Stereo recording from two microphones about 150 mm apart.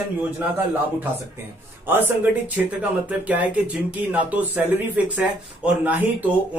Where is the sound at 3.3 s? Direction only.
10° right (ahead or behind).